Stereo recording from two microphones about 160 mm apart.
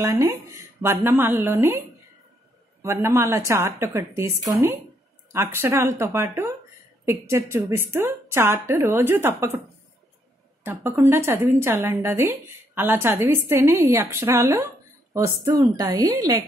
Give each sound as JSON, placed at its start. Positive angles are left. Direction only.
{"t": 0.0, "sound": "a woman's voice", "side_deg": -20}
{"t": 10.6, "sound": "a woman's voice", "side_deg": -15}